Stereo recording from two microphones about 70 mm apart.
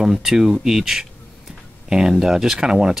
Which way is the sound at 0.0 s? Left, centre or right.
Centre.